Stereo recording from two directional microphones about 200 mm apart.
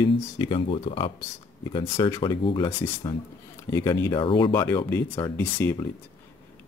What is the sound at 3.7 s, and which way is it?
Speech, 15° left (ahead or behind).